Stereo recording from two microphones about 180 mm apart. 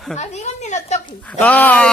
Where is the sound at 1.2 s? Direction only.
10° left (ahead or behind).